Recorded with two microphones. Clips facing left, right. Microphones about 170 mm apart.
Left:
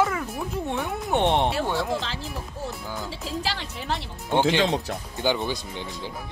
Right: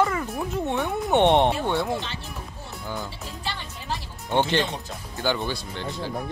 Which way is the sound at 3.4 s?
90° left.